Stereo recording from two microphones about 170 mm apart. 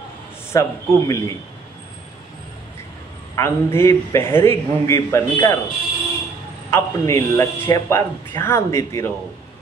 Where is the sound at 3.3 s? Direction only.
15° left (ahead or behind).